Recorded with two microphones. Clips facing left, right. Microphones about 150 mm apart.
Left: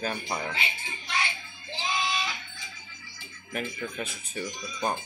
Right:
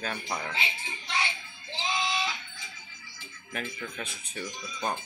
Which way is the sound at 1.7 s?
25° right (ahead or behind).